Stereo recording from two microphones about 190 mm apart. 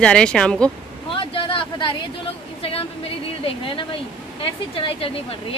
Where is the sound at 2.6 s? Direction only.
30° left (ahead or behind).